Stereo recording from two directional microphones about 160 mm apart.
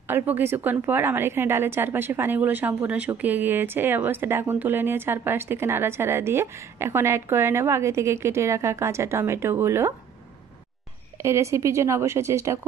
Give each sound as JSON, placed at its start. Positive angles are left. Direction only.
{"t": 0.1, "sound": "a woman's voice", "side_deg": -15}
{"t": 11.2, "sound": "a woman's voice", "side_deg": -20}